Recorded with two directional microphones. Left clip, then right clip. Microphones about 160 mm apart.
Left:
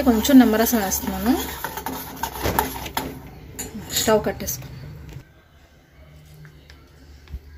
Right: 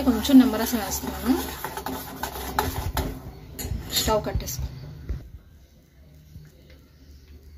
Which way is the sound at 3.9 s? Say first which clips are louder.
Left 4 dB; 45° left (ahead or behind).